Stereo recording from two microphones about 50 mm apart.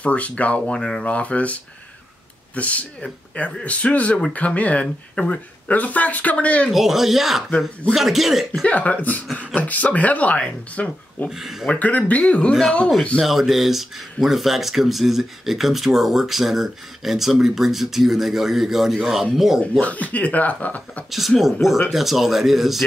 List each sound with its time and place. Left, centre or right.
0.0 s speech: left
1.0 s speech: left
6.7 s speech: centre
8.6 s speech: left
11.2 s speech: centre
11.7 s speech: left
13.2 s speech: centre
19.8 s speech: left
21.4 s speech: centre